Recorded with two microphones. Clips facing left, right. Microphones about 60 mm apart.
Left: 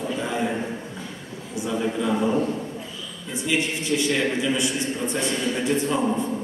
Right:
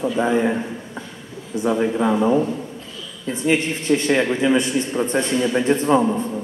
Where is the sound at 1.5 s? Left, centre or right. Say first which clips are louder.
Right 6 dB; right.